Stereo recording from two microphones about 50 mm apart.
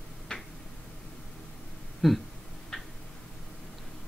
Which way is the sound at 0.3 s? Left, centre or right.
Left.